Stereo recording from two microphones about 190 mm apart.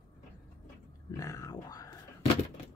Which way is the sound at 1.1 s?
15° left (ahead or behind).